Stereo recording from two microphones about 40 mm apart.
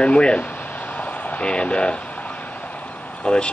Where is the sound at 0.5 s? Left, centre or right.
Left.